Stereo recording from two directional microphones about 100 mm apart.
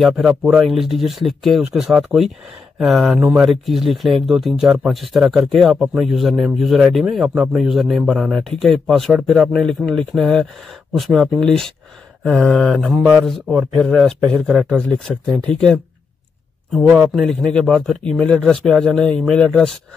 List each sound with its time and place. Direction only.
0.0 s speech: 5° right (ahead or behind); by 15.8 s 10° left (ahead or behind)
16.7 s speech: 5° right (ahead or behind)